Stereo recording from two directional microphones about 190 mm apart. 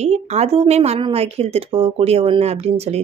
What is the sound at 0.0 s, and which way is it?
Speech, 35° right (ahead or behind).